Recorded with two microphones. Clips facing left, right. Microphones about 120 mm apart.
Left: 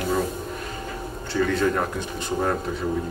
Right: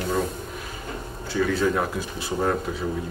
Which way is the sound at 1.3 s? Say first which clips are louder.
Even; 5° right (ahead or behind).